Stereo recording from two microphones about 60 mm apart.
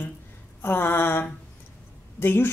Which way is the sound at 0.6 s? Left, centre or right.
Left.